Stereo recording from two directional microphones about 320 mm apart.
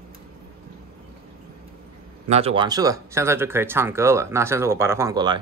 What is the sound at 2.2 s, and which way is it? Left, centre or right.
Speech, centre.